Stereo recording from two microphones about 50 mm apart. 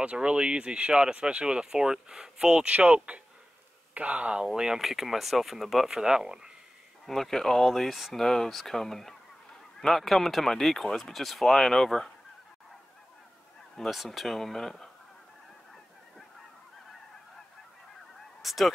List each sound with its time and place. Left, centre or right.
0.0 s speech: right
2.6 s speech: right
4.5 s speech: centre
5.9 s speech: centre
7.1 s speech: centre
13.7 s speech: centre
18.4 s speech: centre